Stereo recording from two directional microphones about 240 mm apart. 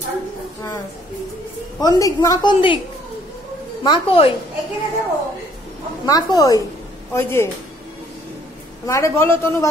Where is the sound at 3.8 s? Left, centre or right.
Left.